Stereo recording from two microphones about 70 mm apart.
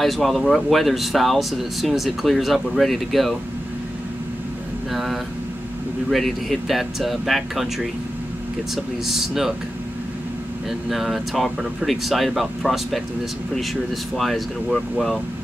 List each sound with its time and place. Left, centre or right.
0.0 s speech: centre
4.9 s speech: centre
10.9 s speech: centre
14.1 s speech: centre